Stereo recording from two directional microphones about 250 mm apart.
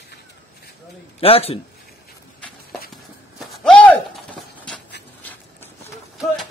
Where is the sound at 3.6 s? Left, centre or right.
Centre.